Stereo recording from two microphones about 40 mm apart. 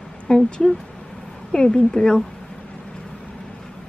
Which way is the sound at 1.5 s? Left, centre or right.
Left.